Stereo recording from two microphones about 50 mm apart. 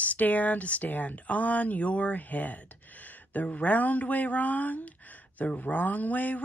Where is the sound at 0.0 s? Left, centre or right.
Left.